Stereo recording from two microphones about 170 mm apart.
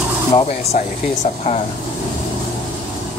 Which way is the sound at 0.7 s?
45° left (ahead or behind).